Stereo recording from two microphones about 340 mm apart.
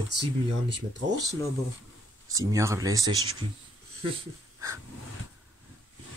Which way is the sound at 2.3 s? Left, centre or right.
Centre.